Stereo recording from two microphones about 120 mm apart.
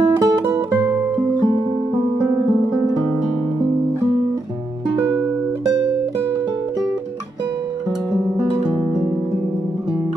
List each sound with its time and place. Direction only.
0.0 s music: 35° right (ahead or behind)